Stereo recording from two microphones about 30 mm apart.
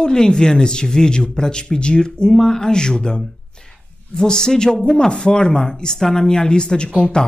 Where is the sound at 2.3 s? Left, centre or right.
Centre.